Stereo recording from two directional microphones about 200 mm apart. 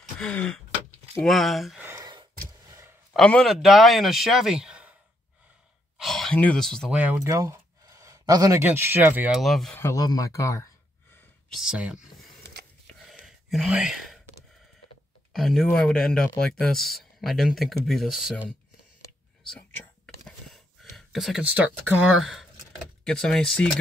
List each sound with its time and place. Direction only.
0.2 s speech: 5° left (ahead or behind)
1.9 s gasp: 20° right (ahead or behind)
3.1 s speech: 5° left (ahead or behind)
5.9 s speech: centre (ahead or behind)
7.0 s speech: 10° right (ahead or behind)
9.8 s speech: 15° left (ahead or behind)
11.4 s speech: centre (ahead or behind)
12.8 s a sound: centre (ahead or behind)
15.3 s speech: centre (ahead or behind)
20.2 s a sound: centre (ahead or behind)
23.0 s speech: centre (ahead or behind)